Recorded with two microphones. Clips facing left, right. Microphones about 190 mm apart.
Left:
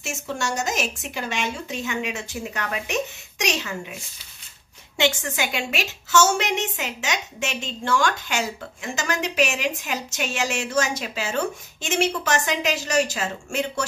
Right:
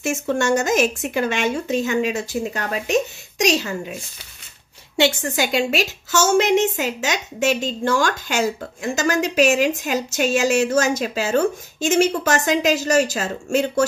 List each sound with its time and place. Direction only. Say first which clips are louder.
0.0 s speech: right 8 dB; 55° right (ahead or behind); by 3.7 s 35° right (ahead or behind)
4.9 s a woman's voice: right 4 dB; 35° right (ahead or behind)